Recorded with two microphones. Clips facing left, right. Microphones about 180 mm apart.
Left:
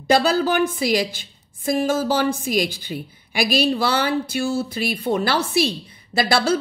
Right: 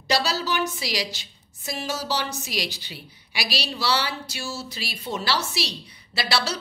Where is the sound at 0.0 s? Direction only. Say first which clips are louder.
Left 8 dB; 50° left (ahead or behind).